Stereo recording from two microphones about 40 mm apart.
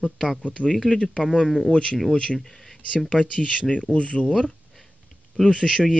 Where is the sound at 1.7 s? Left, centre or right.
Left.